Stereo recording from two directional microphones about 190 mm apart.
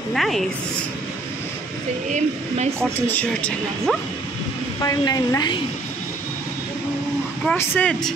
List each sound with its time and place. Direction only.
0.1 s speech: centre (ahead or behind)
2.0 s a woman's voice: 40° right (ahead or behind)
2.8 s speech: 5° left (ahead or behind)
4.8 s a woman's voice: 20° left (ahead or behind)
7.4 s speech: 10° left (ahead or behind)